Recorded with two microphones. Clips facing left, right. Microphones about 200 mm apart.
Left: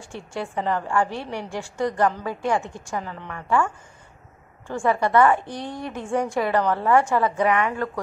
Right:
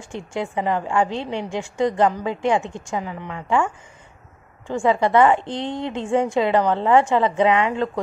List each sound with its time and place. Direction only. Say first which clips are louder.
0.0 s a woman's voice: right 4 dB; 20° right (ahead or behind)